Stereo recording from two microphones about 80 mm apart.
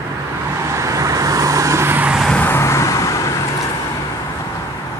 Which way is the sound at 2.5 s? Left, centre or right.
Left.